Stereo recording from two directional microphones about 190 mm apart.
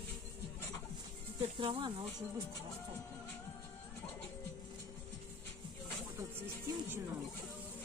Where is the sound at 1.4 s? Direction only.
25° right (ahead or behind).